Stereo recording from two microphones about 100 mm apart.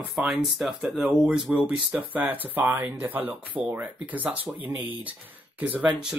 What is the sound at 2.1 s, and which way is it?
Speech, 15° right (ahead or behind).